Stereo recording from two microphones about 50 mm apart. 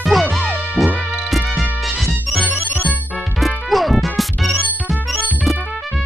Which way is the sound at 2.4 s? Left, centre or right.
Right.